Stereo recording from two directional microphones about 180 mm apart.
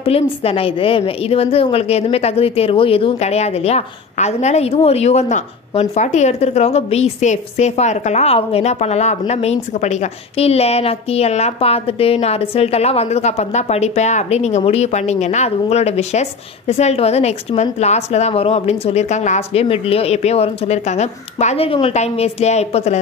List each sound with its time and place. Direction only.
0.0 s a woman's voice: 35° left (ahead or behind)